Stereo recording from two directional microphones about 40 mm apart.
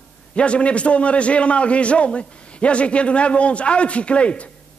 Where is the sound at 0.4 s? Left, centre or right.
Left.